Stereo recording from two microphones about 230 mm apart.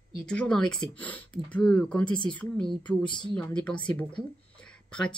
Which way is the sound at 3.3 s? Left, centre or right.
Centre.